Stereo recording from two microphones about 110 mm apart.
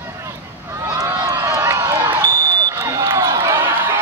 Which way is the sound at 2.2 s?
35° right (ahead or behind).